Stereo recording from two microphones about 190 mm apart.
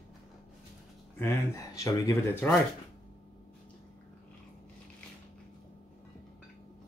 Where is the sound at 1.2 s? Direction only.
15° left (ahead or behind).